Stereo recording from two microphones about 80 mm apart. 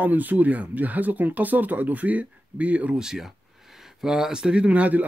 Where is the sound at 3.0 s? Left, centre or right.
Centre.